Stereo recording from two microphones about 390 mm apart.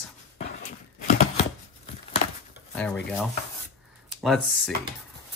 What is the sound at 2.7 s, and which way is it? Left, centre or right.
Speech, centre.